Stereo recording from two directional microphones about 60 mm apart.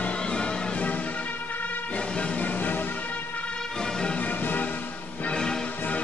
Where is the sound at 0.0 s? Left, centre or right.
Centre.